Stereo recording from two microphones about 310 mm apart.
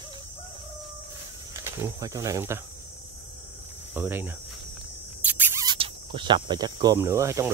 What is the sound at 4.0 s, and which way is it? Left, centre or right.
Speech, centre.